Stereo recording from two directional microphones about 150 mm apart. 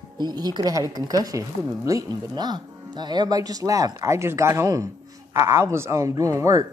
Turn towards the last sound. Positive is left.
turn(degrees=-20)  # may be behind; listen again after turning